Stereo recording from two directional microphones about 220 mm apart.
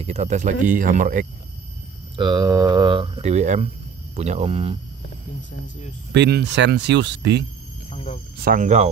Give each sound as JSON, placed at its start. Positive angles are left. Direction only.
{"t": 0.0, "sound": "speech", "side_deg": -30}
{"t": 2.1, "sound": "speech", "side_deg": -20}
{"t": 6.1, "sound": "speech", "side_deg": -50}
{"t": 7.9, "sound": "a sound", "side_deg": 25}
{"t": 8.4, "sound": "speech", "side_deg": -40}